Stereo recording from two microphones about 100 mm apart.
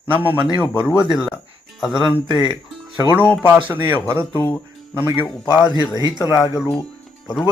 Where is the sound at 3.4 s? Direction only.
20° right (ahead or behind).